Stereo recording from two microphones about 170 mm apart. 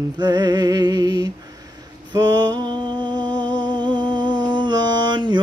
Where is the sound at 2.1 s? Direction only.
25° right (ahead or behind).